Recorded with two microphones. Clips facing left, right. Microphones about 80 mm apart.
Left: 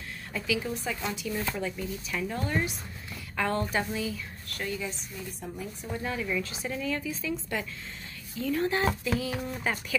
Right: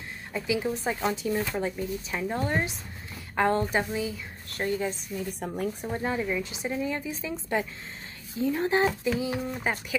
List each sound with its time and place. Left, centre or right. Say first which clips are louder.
0.3 s a woman's voice: right 3 dB; right
3.6 s speech: right 2 dB; centre
4.5 s speech: right 6 dB; right
5.4 s speech: right 8 dB; right
5.9 s a woman's voice: right 1 dB; right